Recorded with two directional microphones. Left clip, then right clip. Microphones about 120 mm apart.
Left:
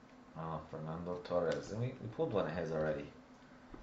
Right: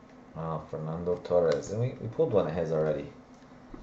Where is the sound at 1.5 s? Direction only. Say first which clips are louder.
Right 10 dB; 45° right (ahead or behind).